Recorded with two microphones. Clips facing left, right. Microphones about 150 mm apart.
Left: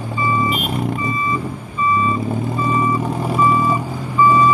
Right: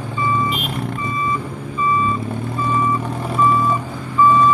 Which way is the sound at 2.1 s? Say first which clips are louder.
Left 3 dB; centre (ahead or behind).